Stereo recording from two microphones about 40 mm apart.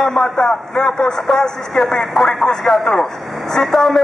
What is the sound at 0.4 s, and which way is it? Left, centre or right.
A man's voice, left.